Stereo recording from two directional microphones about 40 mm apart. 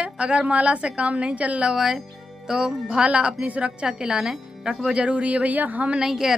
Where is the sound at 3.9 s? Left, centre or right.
Centre; by 5.9 s right.